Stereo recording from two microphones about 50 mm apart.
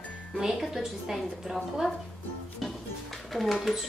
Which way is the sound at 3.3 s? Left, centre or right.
Centre.